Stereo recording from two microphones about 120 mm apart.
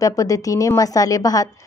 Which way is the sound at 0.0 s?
30° left (ahead or behind).